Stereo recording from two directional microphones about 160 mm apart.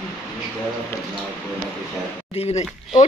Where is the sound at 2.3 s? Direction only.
40° left (ahead or behind).